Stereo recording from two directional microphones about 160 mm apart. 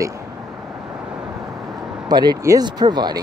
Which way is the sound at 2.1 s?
25° right (ahead or behind).